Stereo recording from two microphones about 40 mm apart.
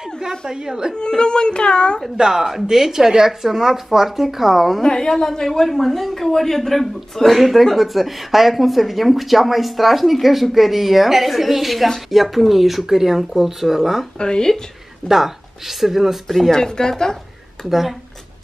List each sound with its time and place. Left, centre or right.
0.5 s speech: centre
0.9 s a child's voice: left
2.1 s speech: centre
4.8 s a woman's voice: centre
14.1 s a child's voice: centre
15.0 s speech: centre
16.3 s a woman's voice: centre
17.6 s speech: centre